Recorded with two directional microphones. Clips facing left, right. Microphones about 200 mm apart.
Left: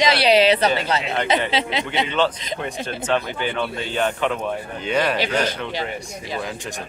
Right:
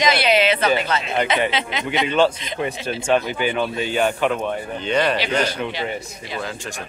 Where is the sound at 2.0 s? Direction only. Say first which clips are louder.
Right 3 dB; 10° right (ahead or behind).